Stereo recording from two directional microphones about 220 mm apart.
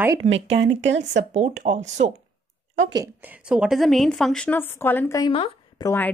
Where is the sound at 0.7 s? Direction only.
55° right (ahead or behind).